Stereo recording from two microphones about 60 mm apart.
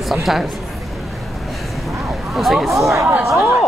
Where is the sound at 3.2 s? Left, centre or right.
Right.